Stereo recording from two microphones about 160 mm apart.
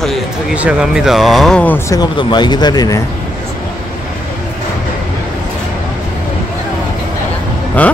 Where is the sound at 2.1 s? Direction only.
30° left (ahead or behind).